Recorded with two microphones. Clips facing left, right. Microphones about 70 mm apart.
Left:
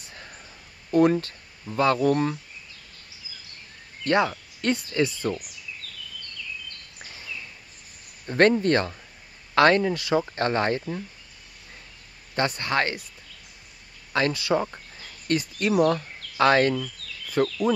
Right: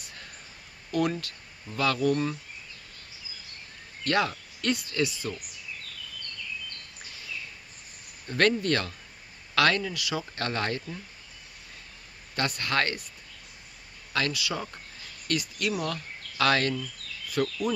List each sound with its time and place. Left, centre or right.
0.0 s a sound: left
0.9 s speech: left
4.0 s speech: left
8.3 s speech: left
12.4 s speech: left
14.1 s speech: left